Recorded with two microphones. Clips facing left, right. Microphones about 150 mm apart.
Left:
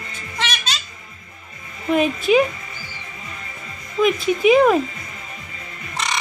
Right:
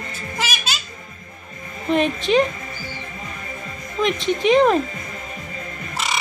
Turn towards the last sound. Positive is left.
turn(degrees=-5)  # may be behind; listen again after turning